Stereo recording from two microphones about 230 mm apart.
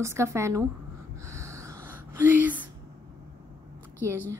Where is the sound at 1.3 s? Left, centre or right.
Centre.